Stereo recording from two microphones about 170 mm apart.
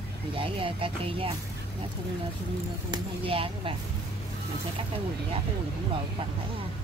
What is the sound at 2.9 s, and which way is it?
Speech, 30° right (ahead or behind).